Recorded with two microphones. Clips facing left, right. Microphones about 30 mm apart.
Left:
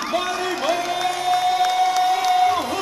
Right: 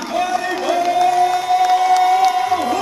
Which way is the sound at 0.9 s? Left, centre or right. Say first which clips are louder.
Right 6 dB; centre.